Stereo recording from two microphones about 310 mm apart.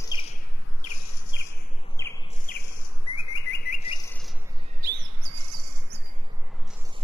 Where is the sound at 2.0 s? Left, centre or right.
Centre.